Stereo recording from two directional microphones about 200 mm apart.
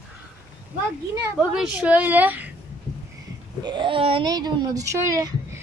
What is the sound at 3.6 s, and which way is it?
A woman's voice, 25° right (ahead or behind).